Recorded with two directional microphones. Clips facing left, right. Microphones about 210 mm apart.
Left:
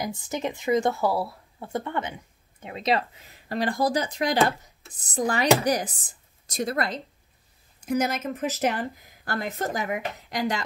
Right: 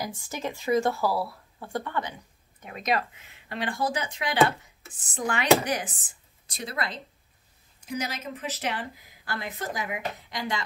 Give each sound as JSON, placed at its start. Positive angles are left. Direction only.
{"t": 0.0, "sound": "speech", "side_deg": 20}